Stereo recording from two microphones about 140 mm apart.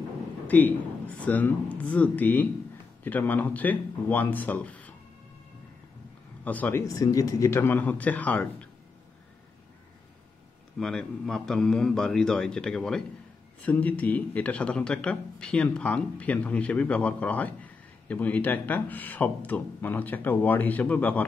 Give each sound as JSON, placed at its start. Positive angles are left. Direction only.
{"t": 0.5, "sound": "a man's voice", "side_deg": 10}
{"t": 6.4, "sound": "a man's voice", "side_deg": 10}
{"t": 10.8, "sound": "a man's voice", "side_deg": 5}